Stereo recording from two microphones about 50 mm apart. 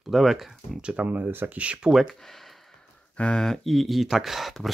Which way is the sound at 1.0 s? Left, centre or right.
Right.